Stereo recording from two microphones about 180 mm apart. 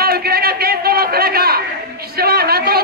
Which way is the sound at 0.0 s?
60° right (ahead or behind).